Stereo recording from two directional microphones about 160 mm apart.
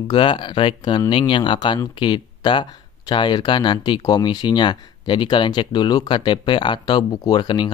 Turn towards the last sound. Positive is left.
turn(degrees=30)  # may be behind; listen again after turning